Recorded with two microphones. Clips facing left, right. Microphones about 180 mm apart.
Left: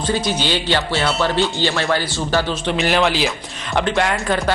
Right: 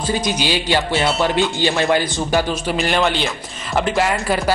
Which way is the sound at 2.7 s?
Centre (ahead or behind).